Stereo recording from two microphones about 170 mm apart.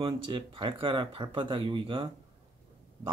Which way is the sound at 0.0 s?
30° right (ahead or behind).